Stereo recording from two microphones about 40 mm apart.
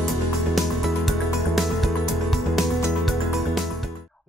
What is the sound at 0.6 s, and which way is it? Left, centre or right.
Music, centre.